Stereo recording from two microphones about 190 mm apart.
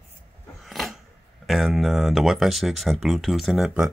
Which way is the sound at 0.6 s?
Centre (ahead or behind).